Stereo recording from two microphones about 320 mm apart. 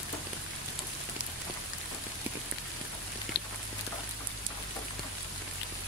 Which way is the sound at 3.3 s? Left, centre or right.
Left.